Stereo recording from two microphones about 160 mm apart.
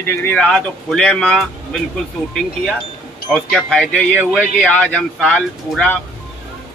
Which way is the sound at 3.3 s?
5° left (ahead or behind).